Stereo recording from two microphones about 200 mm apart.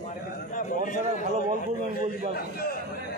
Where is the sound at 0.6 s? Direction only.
40° left (ahead or behind).